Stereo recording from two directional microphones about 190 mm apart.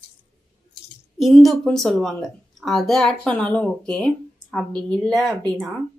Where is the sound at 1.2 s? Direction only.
Centre (ahead or behind).